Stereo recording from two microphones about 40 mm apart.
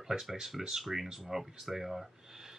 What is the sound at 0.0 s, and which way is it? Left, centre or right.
Speech, centre.